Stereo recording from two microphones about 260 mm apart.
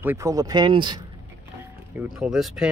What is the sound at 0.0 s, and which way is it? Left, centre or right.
Speech, centre.